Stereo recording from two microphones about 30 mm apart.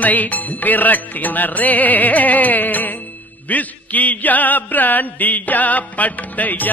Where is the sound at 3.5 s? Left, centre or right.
Left.